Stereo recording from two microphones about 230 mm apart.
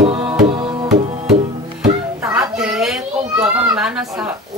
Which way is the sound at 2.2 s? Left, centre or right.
Centre.